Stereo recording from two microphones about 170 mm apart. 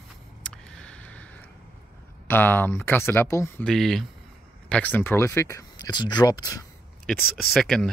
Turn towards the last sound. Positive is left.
turn(degrees=5)  # may be behind; listen again after turning